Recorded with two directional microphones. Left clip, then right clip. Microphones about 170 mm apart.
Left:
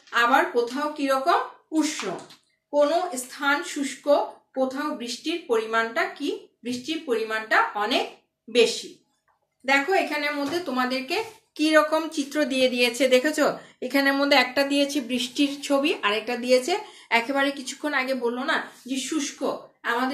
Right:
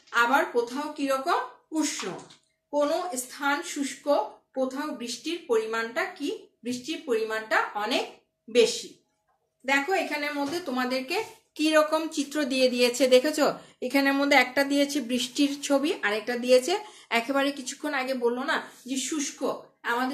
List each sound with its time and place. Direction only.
0.1 s speech: 10° right (ahead or behind)